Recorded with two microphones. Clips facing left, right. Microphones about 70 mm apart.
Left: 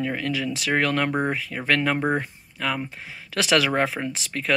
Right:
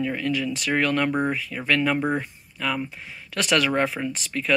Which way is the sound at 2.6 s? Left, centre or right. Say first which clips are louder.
Even; left.